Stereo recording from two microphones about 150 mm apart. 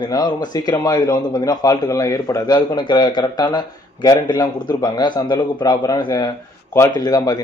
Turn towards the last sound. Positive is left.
turn(degrees=25)  # may be behind; listen again after turning